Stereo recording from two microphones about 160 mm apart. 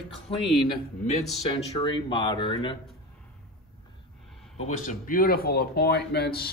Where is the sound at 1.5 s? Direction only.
30° left (ahead or behind).